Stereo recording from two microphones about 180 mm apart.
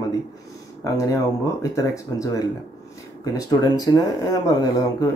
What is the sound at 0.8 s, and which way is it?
Speech, 20° left (ahead or behind).